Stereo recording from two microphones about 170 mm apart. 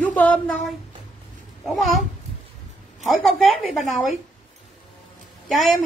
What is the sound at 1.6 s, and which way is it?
Speech, centre (ahead or behind).